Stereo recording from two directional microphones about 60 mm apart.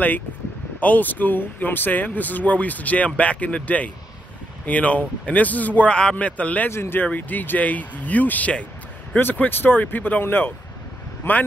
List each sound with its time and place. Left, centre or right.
0.7 s speech: left
6.7 s a man's voice: left